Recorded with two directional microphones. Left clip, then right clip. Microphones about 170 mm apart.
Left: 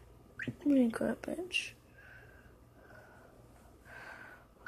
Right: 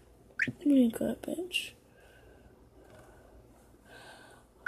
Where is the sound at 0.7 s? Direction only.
40° right (ahead or behind).